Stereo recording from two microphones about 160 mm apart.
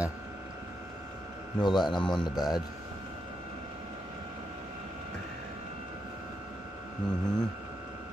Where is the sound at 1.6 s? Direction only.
25° left (ahead or behind).